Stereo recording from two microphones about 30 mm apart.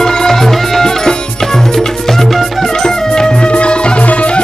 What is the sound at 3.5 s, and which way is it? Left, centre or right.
Music, left.